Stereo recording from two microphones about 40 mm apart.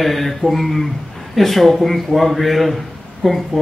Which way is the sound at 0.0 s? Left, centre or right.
Centre.